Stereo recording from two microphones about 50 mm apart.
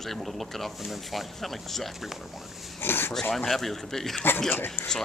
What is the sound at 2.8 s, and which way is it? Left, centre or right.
Speech, left.